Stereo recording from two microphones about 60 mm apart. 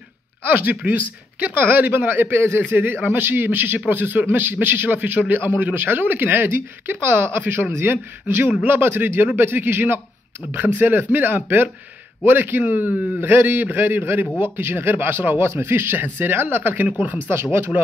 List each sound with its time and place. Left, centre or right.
0.4 s a man's voice: right
13.2 s speech: right
17.3 s speech: right